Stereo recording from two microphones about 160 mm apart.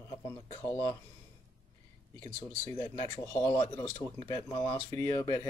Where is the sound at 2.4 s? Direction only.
25° left (ahead or behind).